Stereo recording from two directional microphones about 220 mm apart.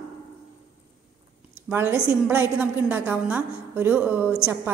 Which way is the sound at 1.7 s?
10° right (ahead or behind).